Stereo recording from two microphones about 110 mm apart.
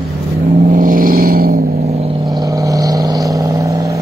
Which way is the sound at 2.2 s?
35° right (ahead or behind).